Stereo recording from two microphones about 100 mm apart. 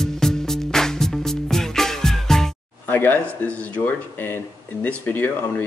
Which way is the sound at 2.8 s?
20° left (ahead or behind).